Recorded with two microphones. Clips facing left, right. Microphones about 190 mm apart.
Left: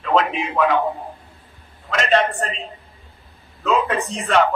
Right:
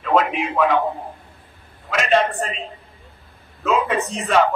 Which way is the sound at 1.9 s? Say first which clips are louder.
Even; centre (ahead or behind).